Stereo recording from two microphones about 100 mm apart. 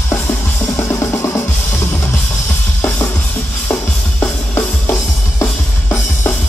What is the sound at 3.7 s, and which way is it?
Music, 20° left (ahead or behind).